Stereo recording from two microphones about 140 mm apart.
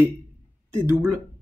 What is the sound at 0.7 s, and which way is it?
Speech, 15° right (ahead or behind).